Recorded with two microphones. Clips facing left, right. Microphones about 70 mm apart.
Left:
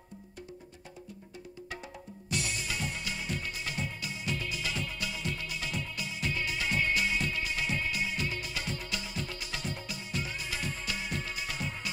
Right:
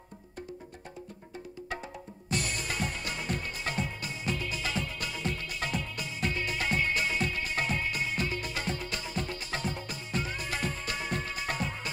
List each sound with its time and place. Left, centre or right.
2.2 s music: right